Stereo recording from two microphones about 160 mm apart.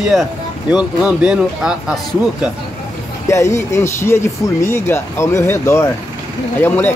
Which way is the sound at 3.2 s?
15° left (ahead or behind).